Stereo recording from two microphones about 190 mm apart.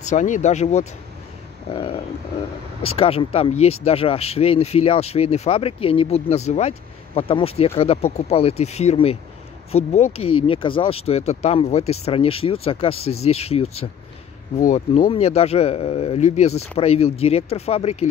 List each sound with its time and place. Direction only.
0.0 s speech: 40° left (ahead or behind)
1.7 s a sound: 30° left (ahead or behind)
2.8 s speech: 30° left (ahead or behind)